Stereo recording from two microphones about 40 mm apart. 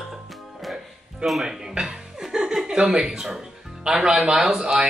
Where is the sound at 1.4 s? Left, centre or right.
Centre.